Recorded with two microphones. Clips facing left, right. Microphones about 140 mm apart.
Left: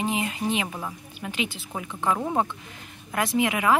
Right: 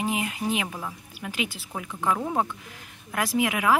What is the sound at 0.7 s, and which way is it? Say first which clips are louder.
Speech: left 1 dB; 5° left (ahead or behind).